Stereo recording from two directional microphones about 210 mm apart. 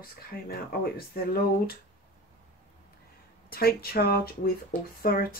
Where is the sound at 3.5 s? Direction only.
45° left (ahead or behind).